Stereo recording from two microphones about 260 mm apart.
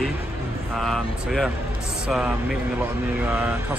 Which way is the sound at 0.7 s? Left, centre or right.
Centre.